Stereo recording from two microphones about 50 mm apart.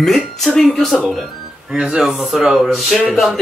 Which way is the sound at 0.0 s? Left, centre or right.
Centre.